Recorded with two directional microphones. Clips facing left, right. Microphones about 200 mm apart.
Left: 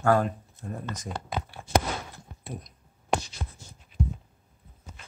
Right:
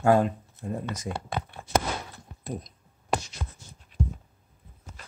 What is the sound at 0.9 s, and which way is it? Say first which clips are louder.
Speech: right 2 dB; 10° right (ahead or behind).